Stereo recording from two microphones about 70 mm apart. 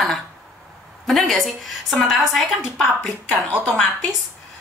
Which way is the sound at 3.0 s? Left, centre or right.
Centre.